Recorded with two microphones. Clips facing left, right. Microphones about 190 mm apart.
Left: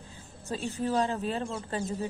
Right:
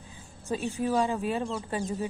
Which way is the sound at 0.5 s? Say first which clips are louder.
Right 2 dB; 15° right (ahead or behind).